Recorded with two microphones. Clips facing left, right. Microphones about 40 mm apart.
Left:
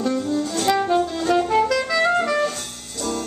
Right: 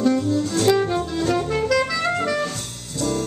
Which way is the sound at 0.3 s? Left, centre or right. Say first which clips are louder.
Right 2 dB; centre.